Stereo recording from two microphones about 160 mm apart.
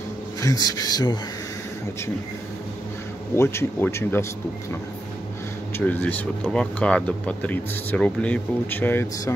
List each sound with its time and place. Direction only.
0.4 s speech: 20° left (ahead or behind)
3.3 s speech: 15° left (ahead or behind)
5.8 s speech: 10° left (ahead or behind)